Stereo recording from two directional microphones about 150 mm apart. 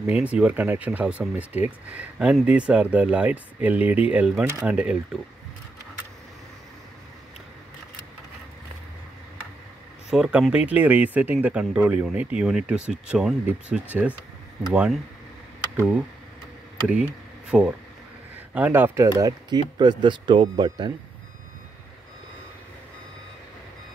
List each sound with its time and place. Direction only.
0.0 s speech: 10° right (ahead or behind)
10.0 s speech: 5° right (ahead or behind)
17.5 s a man's voice: 5° right (ahead or behind); by 20.9 s 30° right (ahead or behind)